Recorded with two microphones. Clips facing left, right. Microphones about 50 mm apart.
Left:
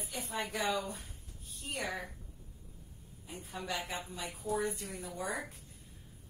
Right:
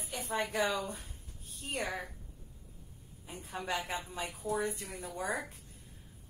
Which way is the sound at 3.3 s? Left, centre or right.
Right.